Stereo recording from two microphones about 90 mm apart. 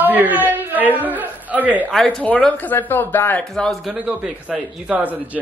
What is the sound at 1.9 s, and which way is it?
Speech, 10° left (ahead or behind).